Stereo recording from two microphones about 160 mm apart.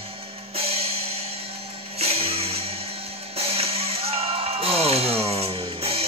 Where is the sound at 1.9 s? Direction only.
40° right (ahead or behind).